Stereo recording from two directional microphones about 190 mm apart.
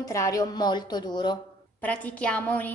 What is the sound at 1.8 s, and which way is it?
Speech, 5° left (ahead or behind).